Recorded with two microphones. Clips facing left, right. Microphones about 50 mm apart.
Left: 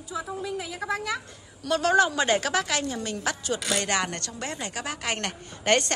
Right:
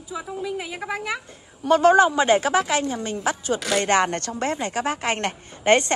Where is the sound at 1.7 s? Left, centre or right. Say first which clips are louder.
Right 6 dB; right.